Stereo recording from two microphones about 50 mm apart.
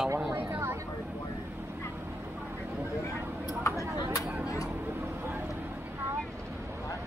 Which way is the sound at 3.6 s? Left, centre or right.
Left.